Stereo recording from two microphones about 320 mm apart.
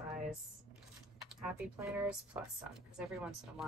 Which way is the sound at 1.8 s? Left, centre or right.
Centre.